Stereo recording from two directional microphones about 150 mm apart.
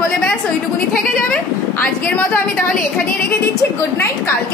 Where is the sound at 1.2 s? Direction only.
10° left (ahead or behind).